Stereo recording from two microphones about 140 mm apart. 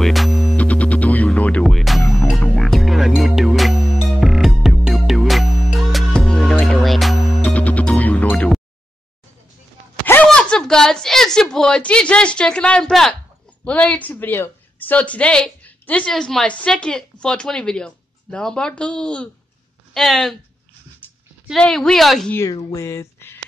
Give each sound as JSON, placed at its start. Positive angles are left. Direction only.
{"t": 0.0, "sound": "music", "side_deg": 0}
{"t": 0.6, "sound": "music", "side_deg": 10}
{"t": 7.4, "sound": "music", "side_deg": 10}
{"t": 8.3, "sound": "a sound", "side_deg": 0}
{"t": 10.2, "sound": "a sound", "side_deg": 5}
{"t": 13.7, "sound": "speech", "side_deg": 10}
{"t": 21.5, "sound": "speech", "side_deg": 5}
{"t": 22.3, "sound": "speech", "side_deg": 20}